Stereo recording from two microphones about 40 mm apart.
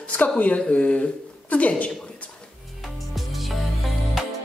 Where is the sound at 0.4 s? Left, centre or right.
Left.